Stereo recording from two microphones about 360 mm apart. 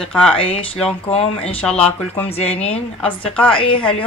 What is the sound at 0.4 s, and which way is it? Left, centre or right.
Speech, centre.